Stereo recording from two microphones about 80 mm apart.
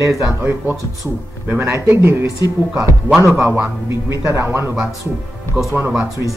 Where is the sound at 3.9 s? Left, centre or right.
Right.